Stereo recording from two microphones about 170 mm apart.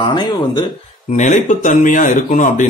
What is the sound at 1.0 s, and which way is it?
Speech, 45° left (ahead or behind).